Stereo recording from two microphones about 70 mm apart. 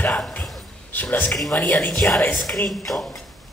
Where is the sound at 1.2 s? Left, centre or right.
Centre.